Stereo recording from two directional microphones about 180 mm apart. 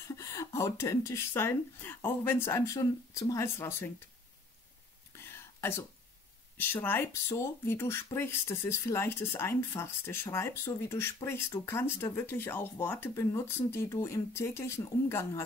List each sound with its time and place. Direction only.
0.1 s speech: 15° left (ahead or behind)
5.1 s a sound: 15° left (ahead or behind)
6.5 s speech: 10° left (ahead or behind)